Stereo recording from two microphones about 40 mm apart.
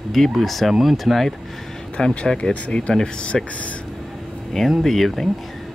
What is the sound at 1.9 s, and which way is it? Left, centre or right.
Speech, left.